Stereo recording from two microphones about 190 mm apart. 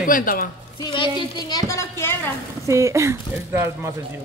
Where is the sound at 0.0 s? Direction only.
45° left (ahead or behind).